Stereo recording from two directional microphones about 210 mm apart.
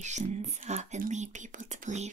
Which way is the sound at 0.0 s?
35° right (ahead or behind).